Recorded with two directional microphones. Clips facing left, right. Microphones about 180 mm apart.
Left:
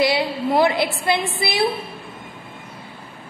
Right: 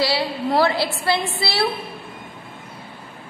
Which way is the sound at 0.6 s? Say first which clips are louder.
Left 1 dB; 20° left (ahead or behind).